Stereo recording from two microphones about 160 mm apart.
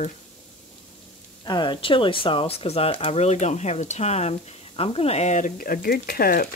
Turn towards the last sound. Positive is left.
turn(degrees=70)  # may be behind; listen again after turning